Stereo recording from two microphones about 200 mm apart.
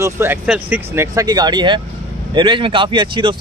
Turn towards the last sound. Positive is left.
turn(degrees=-25)  # may be behind; listen again after turning